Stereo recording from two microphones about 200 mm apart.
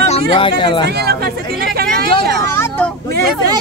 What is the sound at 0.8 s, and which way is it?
Speech, 55° right (ahead or behind).